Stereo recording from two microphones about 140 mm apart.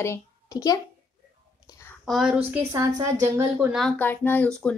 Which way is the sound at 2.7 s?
25° right (ahead or behind).